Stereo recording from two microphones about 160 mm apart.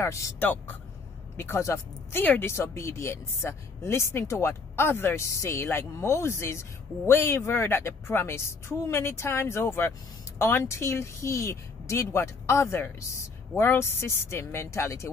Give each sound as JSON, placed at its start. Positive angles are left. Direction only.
{"t": 0.0, "sound": "speech", "side_deg": 15}